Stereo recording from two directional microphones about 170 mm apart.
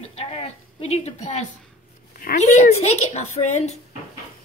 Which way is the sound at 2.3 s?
40° left (ahead or behind).